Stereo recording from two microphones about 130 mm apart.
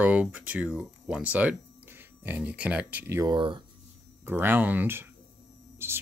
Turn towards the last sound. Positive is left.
turn(degrees=-15)  # may be behind; listen again after turning